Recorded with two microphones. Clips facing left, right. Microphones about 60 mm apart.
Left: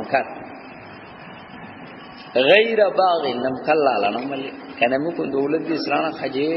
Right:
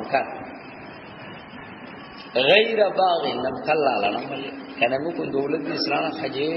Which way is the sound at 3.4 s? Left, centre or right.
Left.